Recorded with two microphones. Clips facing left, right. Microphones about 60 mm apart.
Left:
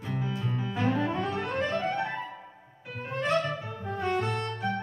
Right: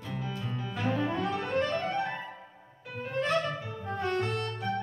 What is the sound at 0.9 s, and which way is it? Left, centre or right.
Saxophone, centre.